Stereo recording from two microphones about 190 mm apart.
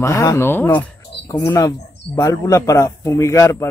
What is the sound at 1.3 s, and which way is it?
Speech, 20° left (ahead or behind).